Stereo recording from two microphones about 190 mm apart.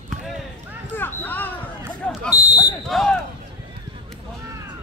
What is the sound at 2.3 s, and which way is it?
Smoke detector, 20° left (ahead or behind).